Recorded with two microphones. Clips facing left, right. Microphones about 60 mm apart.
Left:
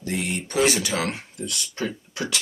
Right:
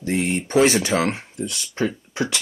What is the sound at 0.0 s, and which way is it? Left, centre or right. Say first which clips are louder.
Speech: right 5 dB; right.